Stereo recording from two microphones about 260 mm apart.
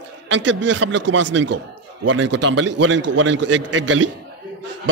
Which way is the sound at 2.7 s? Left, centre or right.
Right.